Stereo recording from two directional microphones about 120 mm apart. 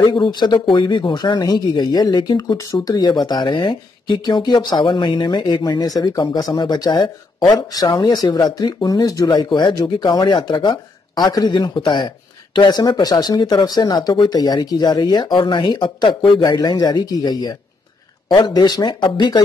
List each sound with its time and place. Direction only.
0.0 s speech: 40° left (ahead or behind)
2.5 s speech: 25° left (ahead or behind)